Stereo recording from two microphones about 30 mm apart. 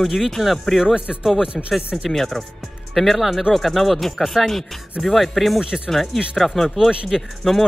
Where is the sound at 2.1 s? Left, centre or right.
Centre.